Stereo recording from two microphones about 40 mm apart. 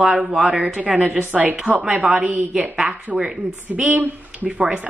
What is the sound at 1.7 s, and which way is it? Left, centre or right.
Speech, right.